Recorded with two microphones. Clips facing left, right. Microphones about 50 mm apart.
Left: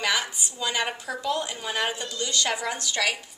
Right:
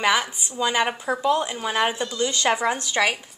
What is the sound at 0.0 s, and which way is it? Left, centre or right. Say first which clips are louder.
A woman's voice: right 5 dB; centre.